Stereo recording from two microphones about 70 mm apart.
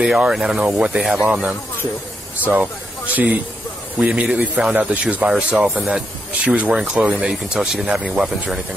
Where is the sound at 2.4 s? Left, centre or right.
Right.